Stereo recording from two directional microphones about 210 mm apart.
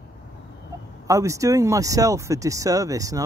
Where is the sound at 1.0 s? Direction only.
15° right (ahead or behind).